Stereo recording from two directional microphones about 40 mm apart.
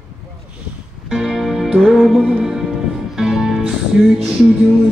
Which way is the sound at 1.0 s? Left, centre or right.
Centre.